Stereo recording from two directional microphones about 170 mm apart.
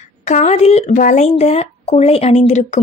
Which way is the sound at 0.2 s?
40° left (ahead or behind).